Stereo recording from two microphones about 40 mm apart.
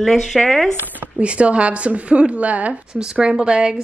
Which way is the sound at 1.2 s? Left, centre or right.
Right.